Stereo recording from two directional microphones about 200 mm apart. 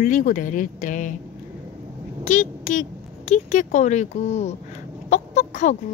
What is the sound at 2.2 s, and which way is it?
Speech, 40° left (ahead or behind).